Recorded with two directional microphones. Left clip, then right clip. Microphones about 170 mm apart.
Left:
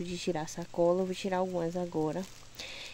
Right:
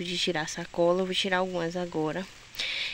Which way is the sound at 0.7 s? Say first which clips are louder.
Right 3 dB; 15° right (ahead or behind).